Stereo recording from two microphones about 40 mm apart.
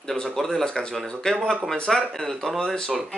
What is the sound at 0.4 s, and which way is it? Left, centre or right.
Speech, centre.